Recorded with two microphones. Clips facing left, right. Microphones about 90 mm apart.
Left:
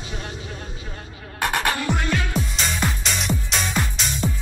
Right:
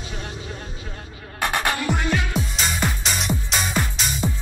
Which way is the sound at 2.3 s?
Centre (ahead or behind).